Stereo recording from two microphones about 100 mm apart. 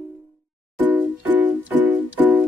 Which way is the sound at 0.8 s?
20° right (ahead or behind).